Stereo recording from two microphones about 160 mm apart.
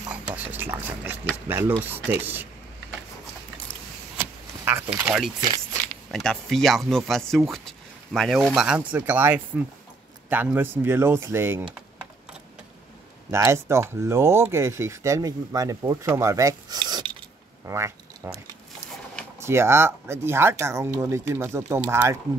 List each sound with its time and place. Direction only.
0.1 s speech: 10° right (ahead or behind)
4.2 s a sound: 10° right (ahead or behind)
5.4 s speech: 25° right (ahead or behind)
6.1 s speech: centre (ahead or behind); by 11.7 s 15° right (ahead or behind)
13.3 s speech: 15° right (ahead or behind)
17.6 s a sound: 15° right (ahead or behind)
19.4 s speech: 15° right (ahead or behind)